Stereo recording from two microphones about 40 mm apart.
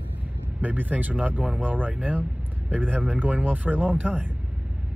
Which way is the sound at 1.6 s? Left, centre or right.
Right.